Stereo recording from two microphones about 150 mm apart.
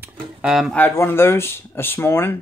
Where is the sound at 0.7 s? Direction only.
15° left (ahead or behind).